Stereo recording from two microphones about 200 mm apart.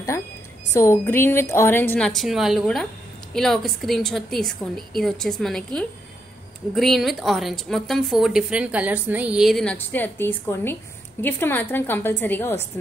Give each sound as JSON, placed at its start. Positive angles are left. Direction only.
{"t": 0.7, "sound": "a woman's voice", "side_deg": 10}